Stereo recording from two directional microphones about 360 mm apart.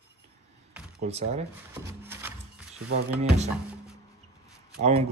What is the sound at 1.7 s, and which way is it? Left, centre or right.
Drawer open or close, centre.